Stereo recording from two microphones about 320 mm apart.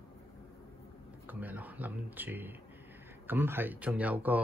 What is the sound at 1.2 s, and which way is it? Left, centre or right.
Speech, centre.